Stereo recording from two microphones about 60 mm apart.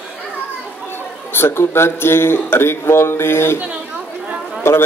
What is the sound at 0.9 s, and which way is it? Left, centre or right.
A man's voice, left.